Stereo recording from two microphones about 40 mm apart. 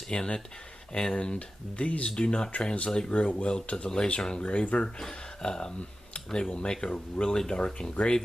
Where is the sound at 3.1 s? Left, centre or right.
Left.